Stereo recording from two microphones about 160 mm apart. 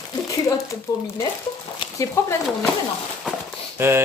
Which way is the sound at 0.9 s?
20° left (ahead or behind).